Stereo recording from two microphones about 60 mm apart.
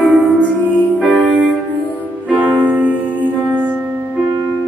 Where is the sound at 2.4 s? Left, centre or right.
Right.